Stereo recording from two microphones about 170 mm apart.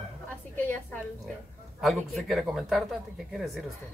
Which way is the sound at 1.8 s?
Centre (ahead or behind).